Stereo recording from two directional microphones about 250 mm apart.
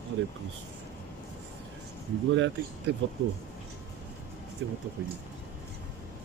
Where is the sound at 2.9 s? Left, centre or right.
Right.